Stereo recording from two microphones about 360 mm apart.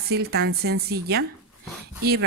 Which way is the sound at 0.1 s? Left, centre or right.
Right.